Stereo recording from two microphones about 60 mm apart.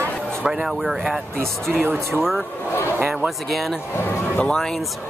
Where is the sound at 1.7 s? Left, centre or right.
Right.